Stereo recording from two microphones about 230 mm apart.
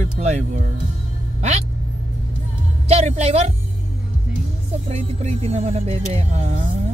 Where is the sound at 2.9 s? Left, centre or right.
Right.